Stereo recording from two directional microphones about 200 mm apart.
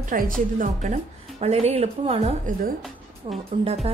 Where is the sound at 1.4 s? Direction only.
30° right (ahead or behind).